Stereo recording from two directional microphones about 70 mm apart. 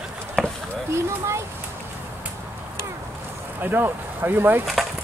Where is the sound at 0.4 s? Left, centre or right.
Centre.